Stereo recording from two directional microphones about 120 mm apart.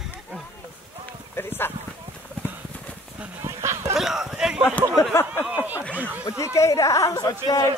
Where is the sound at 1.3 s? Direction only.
20° left (ahead or behind).